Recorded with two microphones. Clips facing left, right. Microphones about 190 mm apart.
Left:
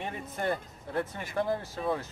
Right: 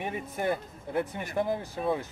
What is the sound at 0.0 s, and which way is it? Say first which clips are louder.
Speech: right 2 dB; 10° right (ahead or behind).